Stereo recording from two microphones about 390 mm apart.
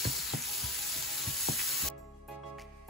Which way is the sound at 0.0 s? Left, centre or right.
Centre.